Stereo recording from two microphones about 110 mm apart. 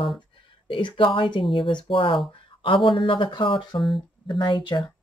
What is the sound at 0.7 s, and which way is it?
Speech, 50° left (ahead or behind).